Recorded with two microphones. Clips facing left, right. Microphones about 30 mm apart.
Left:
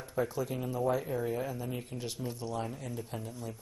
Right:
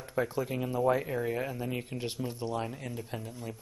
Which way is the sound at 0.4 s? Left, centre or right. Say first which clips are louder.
Right 3 dB; right.